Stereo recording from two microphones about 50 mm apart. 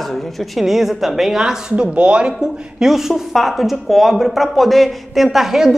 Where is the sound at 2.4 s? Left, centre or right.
Centre.